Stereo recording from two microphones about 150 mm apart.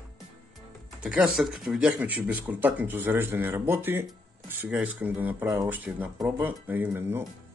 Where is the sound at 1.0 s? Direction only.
5° right (ahead or behind).